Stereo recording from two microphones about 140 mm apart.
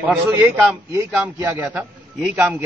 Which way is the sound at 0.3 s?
20° right (ahead or behind).